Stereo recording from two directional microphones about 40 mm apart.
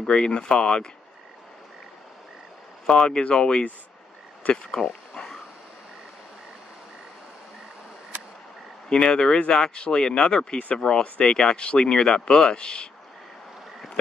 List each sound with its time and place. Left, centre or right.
0.0 s speech: left
3.1 s speech: left
4.4 s speech: left
8.8 s speech: left